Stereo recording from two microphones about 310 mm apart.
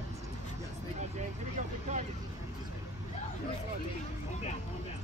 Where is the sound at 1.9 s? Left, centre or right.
Right.